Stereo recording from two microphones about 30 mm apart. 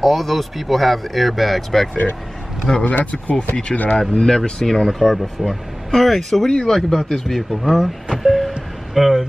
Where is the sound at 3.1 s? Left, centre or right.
Left.